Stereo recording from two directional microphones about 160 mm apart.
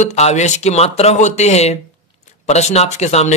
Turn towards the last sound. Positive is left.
turn(degrees=45)  # may be behind; listen again after turning